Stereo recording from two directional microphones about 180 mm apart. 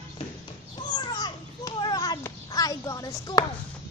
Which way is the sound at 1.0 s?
20° left (ahead or behind).